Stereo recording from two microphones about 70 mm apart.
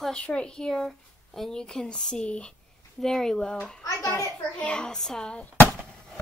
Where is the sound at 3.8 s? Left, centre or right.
Left.